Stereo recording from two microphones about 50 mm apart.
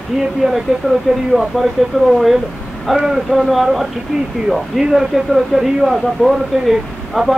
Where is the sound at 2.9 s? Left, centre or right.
Centre.